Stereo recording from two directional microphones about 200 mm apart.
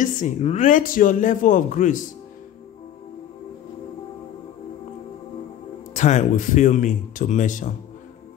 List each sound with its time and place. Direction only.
0.0 s speech: 35° left (ahead or behind)
5.9 s speech: 35° left (ahead or behind)